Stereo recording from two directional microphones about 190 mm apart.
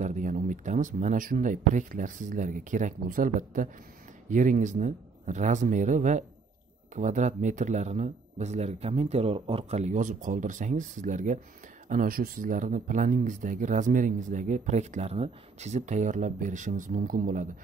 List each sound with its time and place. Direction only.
0.0 s speech: 40° right (ahead or behind)